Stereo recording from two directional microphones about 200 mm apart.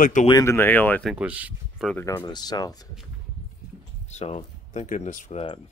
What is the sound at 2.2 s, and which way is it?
Speech, 20° left (ahead or behind).